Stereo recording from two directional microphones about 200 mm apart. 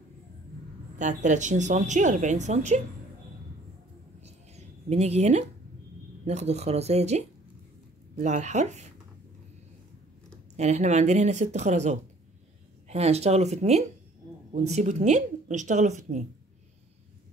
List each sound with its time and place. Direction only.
0.9 s speech: 35° right (ahead or behind)
4.2 s a sound: 35° right (ahead or behind)
6.2 s speech: 35° right (ahead or behind)
10.5 s speech: 35° right (ahead or behind)